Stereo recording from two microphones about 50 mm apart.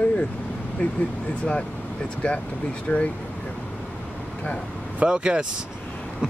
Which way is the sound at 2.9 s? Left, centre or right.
Left.